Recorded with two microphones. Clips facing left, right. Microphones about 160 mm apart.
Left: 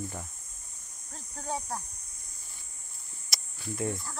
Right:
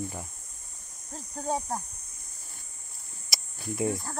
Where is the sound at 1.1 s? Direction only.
40° right (ahead or behind).